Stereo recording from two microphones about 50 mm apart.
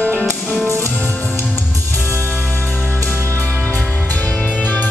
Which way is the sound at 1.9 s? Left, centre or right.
Left.